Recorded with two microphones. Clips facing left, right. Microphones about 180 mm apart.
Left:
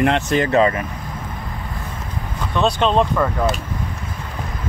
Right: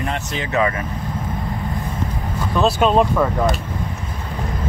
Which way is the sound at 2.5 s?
5° right (ahead or behind).